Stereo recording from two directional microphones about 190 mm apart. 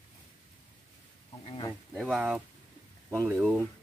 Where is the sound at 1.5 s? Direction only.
25° left (ahead or behind).